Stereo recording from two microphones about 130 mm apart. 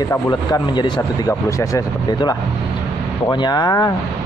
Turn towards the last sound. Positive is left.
turn(degrees=30)  # may be behind; listen again after turning